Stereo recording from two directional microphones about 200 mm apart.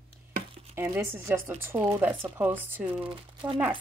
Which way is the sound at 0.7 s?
10° right (ahead or behind).